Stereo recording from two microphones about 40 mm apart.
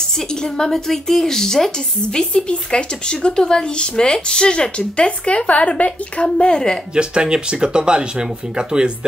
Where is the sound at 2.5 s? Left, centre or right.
Left.